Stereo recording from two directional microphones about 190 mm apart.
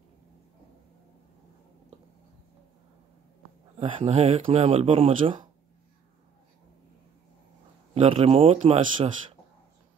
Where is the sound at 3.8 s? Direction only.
25° right (ahead or behind).